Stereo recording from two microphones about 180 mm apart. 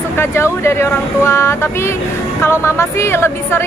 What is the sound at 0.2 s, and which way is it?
Speech, 15° left (ahead or behind).